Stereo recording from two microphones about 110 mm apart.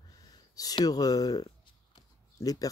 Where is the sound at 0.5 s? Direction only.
35° left (ahead or behind).